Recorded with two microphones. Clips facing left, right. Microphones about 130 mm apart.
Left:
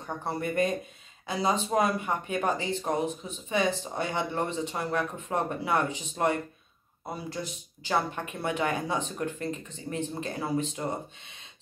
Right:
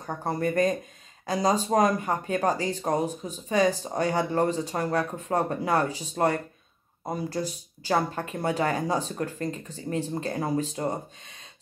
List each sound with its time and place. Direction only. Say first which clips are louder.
0.0 s speech: right 4 dB; 40° right (ahead or behind)